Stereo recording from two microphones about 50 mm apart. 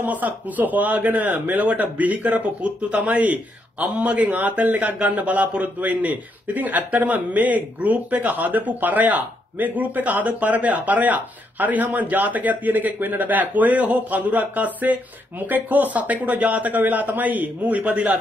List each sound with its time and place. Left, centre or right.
0.0 s a man's voice: right